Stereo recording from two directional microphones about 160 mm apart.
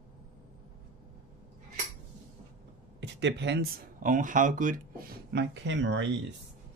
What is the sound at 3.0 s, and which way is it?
Speech, 90° right.